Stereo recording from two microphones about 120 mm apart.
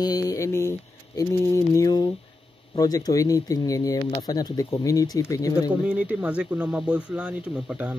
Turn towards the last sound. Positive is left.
turn(degrees=-10)  # may be behind; listen again after turning